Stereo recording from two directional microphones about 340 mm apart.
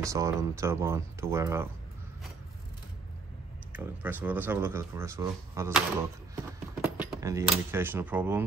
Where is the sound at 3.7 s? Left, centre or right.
Centre.